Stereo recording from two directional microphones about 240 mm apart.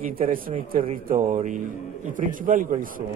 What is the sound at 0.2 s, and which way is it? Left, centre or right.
A man's voice, right.